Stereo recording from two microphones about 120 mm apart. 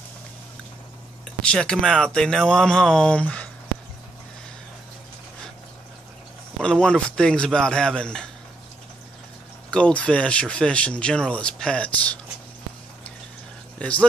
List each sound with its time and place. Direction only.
1.4 s speech: 5° left (ahead or behind)
6.6 s speech: 5° left (ahead or behind)
9.7 s speech: 10° left (ahead or behind)
13.7 s speech: 10° left (ahead or behind)